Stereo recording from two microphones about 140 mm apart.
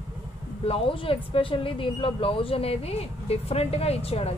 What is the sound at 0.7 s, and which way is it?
Speech, 40° left (ahead or behind).